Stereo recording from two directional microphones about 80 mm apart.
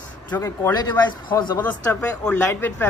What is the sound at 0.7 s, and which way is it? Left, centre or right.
Speech, left.